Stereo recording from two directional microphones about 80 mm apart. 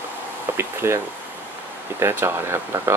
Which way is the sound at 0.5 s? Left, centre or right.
Right.